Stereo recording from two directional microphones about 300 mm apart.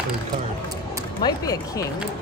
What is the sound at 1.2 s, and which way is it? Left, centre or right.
Speech, centre.